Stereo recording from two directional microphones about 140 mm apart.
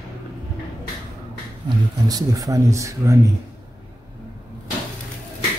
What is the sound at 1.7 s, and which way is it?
Speech, 25° right (ahead or behind).